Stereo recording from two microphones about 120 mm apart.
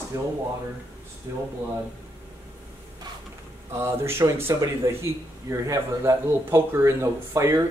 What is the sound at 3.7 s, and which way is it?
A man's voice, 20° right (ahead or behind).